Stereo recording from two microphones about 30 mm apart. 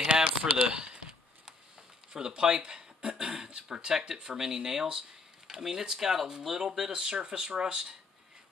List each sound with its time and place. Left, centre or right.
0.1 s a sound: right
0.7 s speech: right
2.1 s speech: right
4.4 s speech: centre